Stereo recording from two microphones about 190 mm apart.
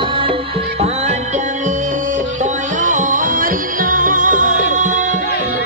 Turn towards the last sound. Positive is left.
turn(degrees=-40)  # may be behind; listen again after turning